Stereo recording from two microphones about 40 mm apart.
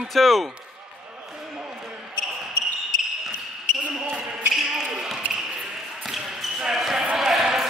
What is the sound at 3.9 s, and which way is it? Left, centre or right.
Basketball bounce, centre.